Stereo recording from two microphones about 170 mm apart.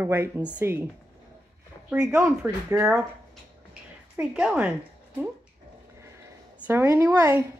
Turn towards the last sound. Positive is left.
turn(degrees=-15)  # may be behind; listen again after turning